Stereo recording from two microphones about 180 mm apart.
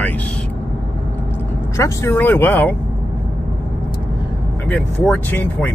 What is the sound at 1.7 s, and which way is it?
Speech, 15° left (ahead or behind).